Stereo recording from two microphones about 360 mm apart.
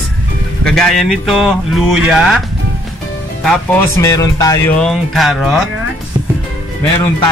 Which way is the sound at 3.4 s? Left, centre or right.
Centre.